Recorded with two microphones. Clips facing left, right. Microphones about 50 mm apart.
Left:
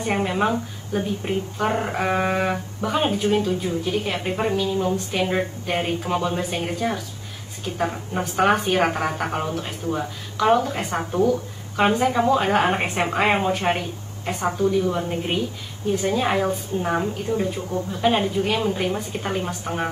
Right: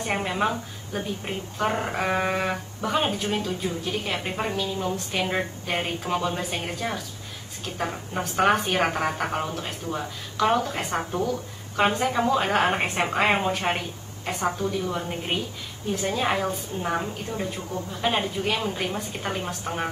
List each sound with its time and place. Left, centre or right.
0.0 s speech: centre
1.6 s a woman's voice: centre
1.9 s speech: centre
14.4 s a woman's voice: centre